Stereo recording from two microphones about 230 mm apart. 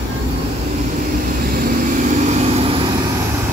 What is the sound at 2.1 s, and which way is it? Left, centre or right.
Vehicle, right.